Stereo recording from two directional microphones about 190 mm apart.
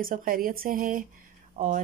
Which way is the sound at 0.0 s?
45° right (ahead or behind).